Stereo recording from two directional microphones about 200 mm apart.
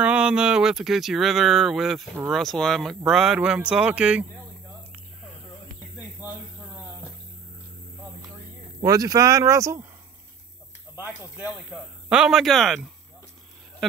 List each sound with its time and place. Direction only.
0.0 s speech: 5° right (ahead or behind)
8.8 s speech: 20° right (ahead or behind)
11.0 s speech: 5° right (ahead or behind)